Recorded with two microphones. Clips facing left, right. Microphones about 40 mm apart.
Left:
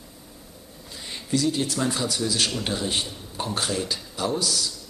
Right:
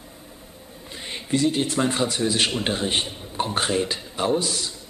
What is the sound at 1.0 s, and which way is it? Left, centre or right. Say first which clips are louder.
Speech: right 2 dB; right.